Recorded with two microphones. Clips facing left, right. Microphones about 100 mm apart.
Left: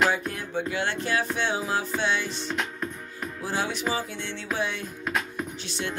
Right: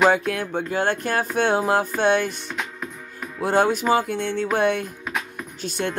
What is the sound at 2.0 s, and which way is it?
Speech, 55° right (ahead or behind).